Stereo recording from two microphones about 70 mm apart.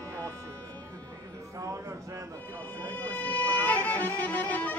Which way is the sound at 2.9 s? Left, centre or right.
Left.